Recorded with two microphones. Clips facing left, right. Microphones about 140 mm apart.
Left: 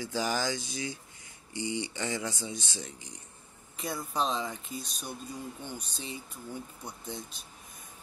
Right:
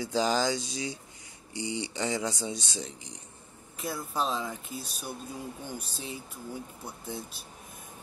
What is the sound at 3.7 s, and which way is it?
Speech, 5° right (ahead or behind).